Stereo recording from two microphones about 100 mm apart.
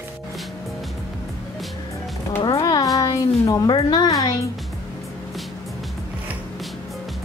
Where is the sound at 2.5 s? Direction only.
40° left (ahead or behind).